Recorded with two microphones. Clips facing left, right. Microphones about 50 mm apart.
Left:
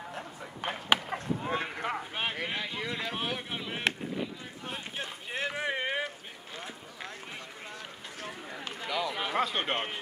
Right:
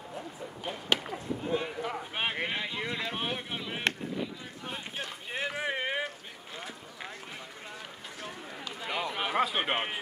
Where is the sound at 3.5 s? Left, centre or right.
Centre.